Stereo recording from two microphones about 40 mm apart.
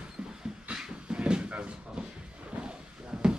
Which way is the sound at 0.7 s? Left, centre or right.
Right.